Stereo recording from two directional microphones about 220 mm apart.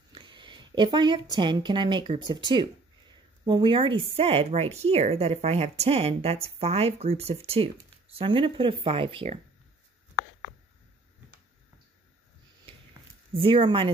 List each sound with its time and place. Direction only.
0.1 s a woman's voice: 20° right (ahead or behind)
13.3 s speech: 25° right (ahead or behind)